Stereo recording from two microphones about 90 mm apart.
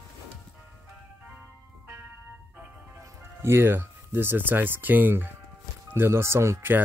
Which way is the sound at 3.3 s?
25° right (ahead or behind).